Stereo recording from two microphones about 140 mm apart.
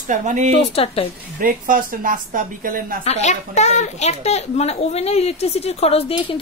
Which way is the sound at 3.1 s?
55° left (ahead or behind).